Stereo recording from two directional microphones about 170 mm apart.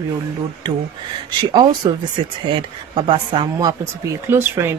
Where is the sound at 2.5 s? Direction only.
30° right (ahead or behind).